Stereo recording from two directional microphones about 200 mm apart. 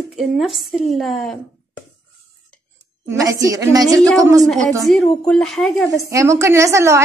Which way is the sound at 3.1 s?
15° right (ahead or behind).